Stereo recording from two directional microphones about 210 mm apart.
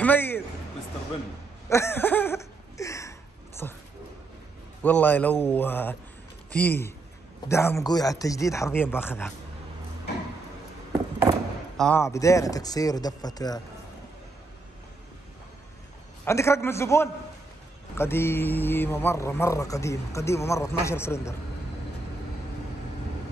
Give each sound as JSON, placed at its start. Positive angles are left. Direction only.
{"t": 0.0, "sound": "a man's voice", "side_deg": 10}
{"t": 1.7, "sound": "a sound", "side_deg": 10}
{"t": 4.8, "sound": "a man's voice", "side_deg": 10}
{"t": 11.7, "sound": "a sound", "side_deg": 5}
{"t": 12.0, "sound": "a man's voice", "side_deg": 15}
{"t": 16.3, "sound": "a man's voice", "side_deg": 15}